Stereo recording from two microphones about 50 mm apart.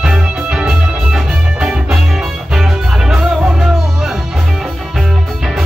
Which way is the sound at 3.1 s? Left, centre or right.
Centre.